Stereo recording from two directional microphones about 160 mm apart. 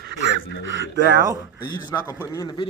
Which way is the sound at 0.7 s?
90° right.